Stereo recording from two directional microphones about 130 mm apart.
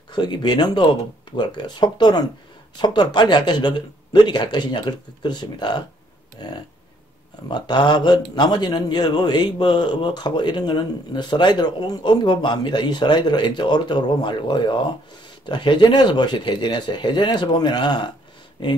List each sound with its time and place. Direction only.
0.1 s speech: 35° left (ahead or behind)